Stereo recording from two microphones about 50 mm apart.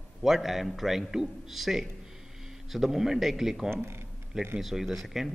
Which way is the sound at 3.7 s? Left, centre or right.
Right.